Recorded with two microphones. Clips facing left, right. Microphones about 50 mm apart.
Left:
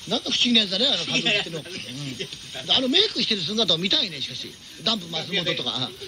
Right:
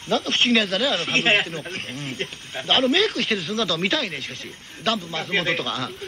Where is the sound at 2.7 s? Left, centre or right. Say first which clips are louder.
Right 3 dB; right.